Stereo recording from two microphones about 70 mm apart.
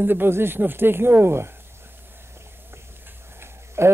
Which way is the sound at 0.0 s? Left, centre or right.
Right.